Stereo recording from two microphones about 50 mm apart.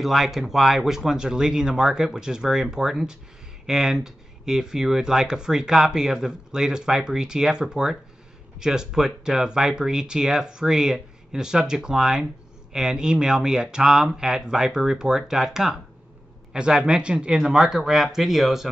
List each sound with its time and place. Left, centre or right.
0.0 s speech: centre
17.4 s speech: centre